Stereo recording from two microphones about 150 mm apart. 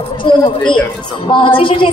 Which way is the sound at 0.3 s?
30° left (ahead or behind).